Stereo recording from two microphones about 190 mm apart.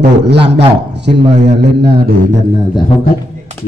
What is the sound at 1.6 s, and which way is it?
Speech, 60° right (ahead or behind).